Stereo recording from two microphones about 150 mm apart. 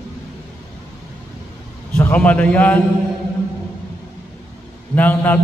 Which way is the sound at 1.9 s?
10° left (ahead or behind).